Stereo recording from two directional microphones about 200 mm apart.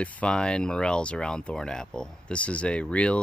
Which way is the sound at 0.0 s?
5° left (ahead or behind).